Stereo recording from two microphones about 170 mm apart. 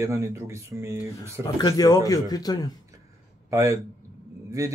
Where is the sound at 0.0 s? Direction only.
15° right (ahead or behind).